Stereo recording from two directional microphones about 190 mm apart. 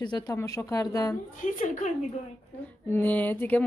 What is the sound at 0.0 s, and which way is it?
Speech, 20° left (ahead or behind).